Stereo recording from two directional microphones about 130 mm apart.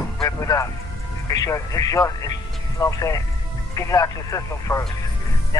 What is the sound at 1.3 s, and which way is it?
Speech, 25° left (ahead or behind).